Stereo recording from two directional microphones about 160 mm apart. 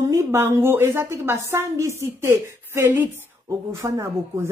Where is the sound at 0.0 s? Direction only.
20° right (ahead or behind).